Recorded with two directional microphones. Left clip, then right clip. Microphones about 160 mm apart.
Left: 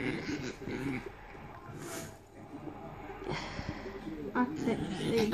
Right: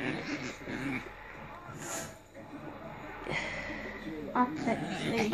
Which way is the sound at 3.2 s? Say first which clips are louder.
Right 4 dB; centre (ahead or behind).